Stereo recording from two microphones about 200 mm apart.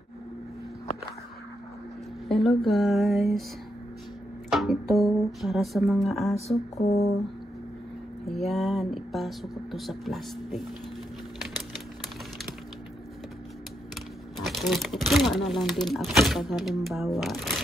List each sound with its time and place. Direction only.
2.2 s speech: centre (ahead or behind)
4.5 s music: centre (ahead or behind)
4.9 s speech: centre (ahead or behind)
6.8 s a sound: 30° left (ahead or behind)
8.3 s speech: centre (ahead or behind)
14.4 s speech: centre (ahead or behind)